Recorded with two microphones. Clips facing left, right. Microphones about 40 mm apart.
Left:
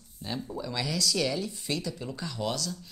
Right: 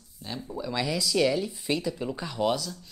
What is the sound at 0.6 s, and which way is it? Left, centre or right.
Speech, centre.